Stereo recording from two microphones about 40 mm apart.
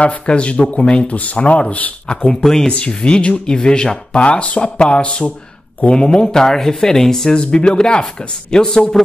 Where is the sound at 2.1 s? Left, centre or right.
Left.